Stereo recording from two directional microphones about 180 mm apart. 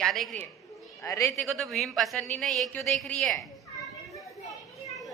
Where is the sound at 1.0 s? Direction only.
15° left (ahead or behind).